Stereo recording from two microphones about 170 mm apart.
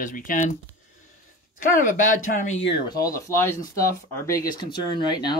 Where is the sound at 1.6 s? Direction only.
50° left (ahead or behind).